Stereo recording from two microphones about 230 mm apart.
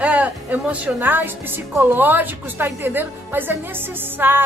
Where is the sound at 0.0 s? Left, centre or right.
Centre.